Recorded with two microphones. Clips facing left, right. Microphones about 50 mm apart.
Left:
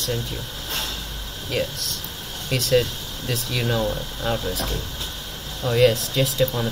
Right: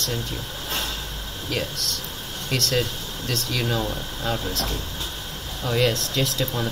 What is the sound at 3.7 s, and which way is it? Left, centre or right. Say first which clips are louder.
Speech: left 3 dB; centre.